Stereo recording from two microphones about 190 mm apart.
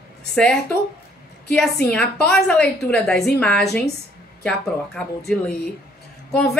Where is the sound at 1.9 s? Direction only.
5° left (ahead or behind).